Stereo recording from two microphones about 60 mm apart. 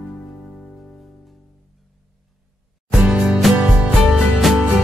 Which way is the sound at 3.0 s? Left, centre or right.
Centre.